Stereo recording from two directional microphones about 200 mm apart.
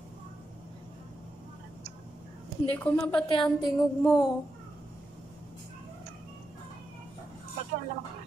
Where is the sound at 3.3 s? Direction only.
20° left (ahead or behind).